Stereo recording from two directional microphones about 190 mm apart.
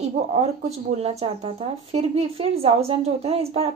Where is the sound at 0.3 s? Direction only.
35° right (ahead or behind).